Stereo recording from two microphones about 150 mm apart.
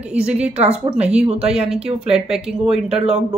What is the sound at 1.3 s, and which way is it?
Speech, 40° right (ahead or behind).